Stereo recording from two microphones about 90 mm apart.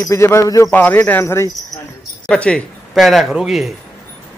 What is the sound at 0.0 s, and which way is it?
Speech, 30° left (ahead or behind).